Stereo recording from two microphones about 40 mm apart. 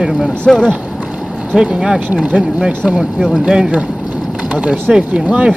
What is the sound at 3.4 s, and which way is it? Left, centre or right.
Speech, right.